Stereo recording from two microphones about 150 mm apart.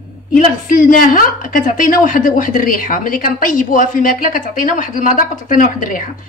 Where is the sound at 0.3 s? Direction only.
60° left (ahead or behind).